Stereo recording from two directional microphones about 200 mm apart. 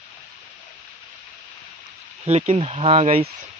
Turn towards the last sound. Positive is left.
turn(degrees=-30)  # may be behind; listen again after turning